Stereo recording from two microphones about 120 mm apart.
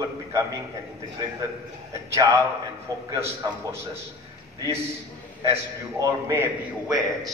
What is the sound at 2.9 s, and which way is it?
Speech, 30° right (ahead or behind).